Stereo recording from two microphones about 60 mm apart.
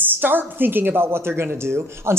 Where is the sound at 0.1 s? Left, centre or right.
Right.